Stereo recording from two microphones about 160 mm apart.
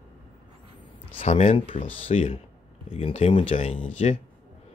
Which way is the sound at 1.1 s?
40° left (ahead or behind).